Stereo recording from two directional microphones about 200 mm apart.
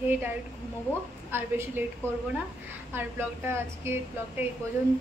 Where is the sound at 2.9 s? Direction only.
10° right (ahead or behind).